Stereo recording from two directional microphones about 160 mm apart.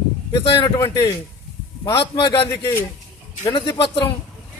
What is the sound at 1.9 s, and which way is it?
A man's voice, 30° left (ahead or behind).